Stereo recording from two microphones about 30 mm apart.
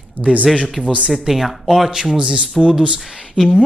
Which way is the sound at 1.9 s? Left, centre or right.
Right.